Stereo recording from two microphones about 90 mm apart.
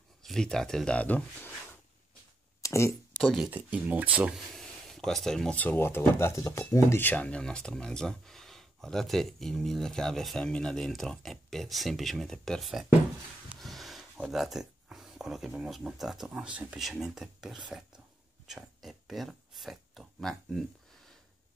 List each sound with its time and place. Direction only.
0.2 s speech: 5° left (ahead or behind)
2.6 s speech: 35° left (ahead or behind)
3.2 s speech: centre (ahead or behind)
3.4 s speech: 20° right (ahead or behind)
4.6 s a sound: centre (ahead or behind)
5.6 s speech: 25° left (ahead or behind); by 20.6 s 5° left (ahead or behind)